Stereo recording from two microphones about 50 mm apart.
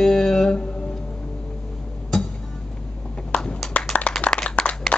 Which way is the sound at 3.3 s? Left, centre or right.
Centre.